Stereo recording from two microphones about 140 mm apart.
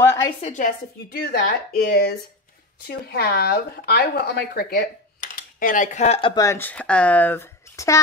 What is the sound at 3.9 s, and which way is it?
Speech, 90° left.